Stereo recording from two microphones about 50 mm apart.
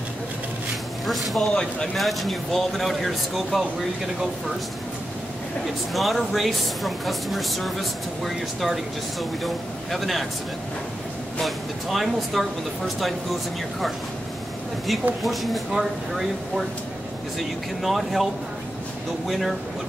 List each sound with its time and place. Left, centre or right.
1.0 s speech: centre
1.5 s speech: centre
2.0 s speech: centre
5.9 s speech: centre
11.4 s speech: centre
15.2 s speech: centre